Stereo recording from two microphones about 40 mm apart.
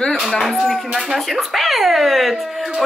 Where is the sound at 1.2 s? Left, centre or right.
Centre.